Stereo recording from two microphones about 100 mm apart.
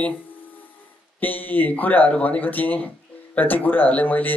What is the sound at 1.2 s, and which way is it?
A man's voice, 15° left (ahead or behind).